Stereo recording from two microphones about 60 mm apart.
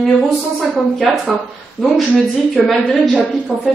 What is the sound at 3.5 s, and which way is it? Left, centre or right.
Speech, centre.